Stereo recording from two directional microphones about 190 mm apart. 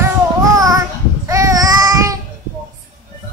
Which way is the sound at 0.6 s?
20° right (ahead or behind).